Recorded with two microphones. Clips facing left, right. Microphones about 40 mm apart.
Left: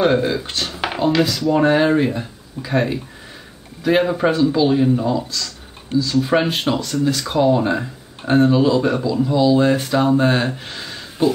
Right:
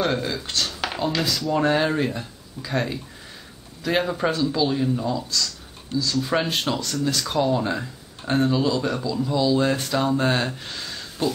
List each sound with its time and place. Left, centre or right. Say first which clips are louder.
0.0 s speech: left 7 dB; centre
1.2 s speech: left 6 dB; centre
1.5 s speech: left 5 dB; centre